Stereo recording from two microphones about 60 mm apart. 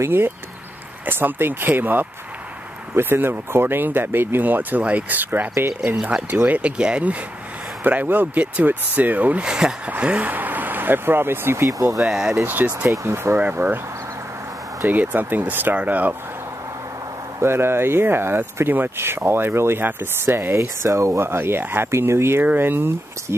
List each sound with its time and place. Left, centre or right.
0.0 s speech: right
9.4 s speech: centre
9.8 s speech: right
11.6 s speech: right
12.0 s speech: centre
12.4 s speech: right
12.9 s speech: right
13.4 s speech: right
14.8 s speech: right
17.4 s speech: right
22.4 s speech: right